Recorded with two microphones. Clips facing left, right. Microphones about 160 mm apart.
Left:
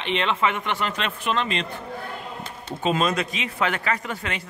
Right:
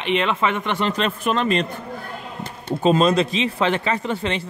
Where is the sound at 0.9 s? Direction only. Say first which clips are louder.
Right 5 dB; 40° right (ahead or behind).